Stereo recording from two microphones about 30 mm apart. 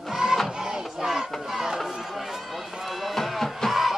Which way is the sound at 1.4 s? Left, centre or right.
Centre.